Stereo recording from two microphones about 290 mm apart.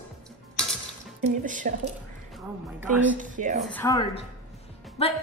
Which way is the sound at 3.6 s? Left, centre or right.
Centre.